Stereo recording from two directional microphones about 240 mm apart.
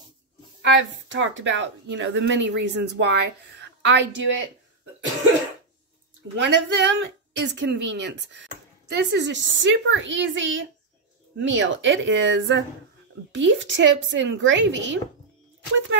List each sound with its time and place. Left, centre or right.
0.6 s speech: right
6.3 s speech: right